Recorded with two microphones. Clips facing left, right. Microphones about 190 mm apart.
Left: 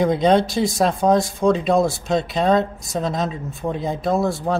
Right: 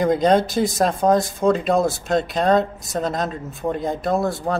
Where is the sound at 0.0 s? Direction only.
Centre (ahead or behind).